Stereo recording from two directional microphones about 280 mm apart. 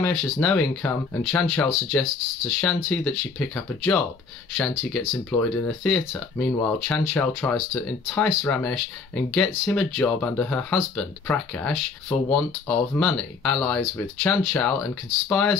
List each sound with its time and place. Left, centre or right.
0.0 s speech: centre